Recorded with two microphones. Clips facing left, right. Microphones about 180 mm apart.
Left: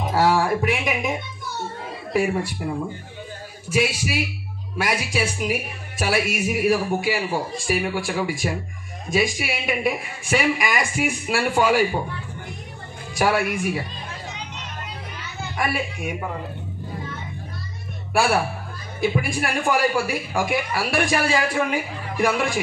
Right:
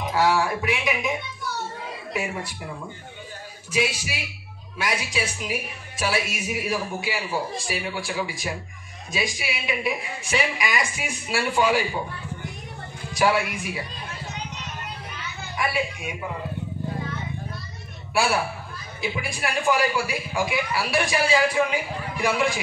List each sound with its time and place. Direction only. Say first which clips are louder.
0.1 s a sound: left 3 dB; 45° left (ahead or behind)
3.7 s a man's voice: left 4 dB; 50° left (ahead or behind)
13.2 s a man's voice: left 1 dB; 55° left (ahead or behind)
15.5 s a man's voice: left 1 dB; 55° left (ahead or behind)
18.1 s a man's voice: left 3 dB; 55° left (ahead or behind)